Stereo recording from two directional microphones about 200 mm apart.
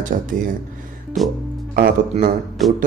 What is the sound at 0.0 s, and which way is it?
Speech, 40° right (ahead or behind).